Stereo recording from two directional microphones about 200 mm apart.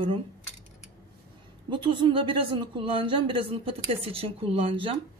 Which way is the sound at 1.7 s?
25° right (ahead or behind).